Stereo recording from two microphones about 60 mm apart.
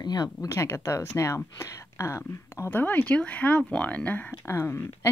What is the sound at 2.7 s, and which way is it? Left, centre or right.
Speech, left.